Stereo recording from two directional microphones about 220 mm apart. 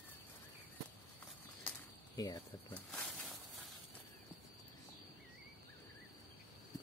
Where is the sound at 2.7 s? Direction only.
5° left (ahead or behind).